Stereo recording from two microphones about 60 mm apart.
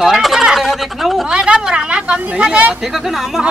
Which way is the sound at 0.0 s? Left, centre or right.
Centre.